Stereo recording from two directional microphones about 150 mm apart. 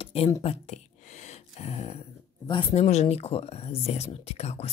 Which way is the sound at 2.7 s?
50° left (ahead or behind).